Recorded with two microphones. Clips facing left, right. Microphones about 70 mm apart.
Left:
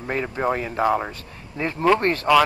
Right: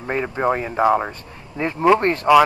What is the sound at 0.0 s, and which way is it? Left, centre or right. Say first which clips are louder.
Speech: right 3 dB; centre.